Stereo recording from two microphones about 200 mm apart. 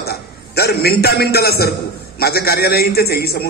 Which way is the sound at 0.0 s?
50° left (ahead or behind).